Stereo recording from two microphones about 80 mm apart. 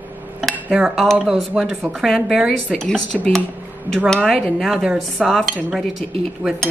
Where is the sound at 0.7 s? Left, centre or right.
Centre.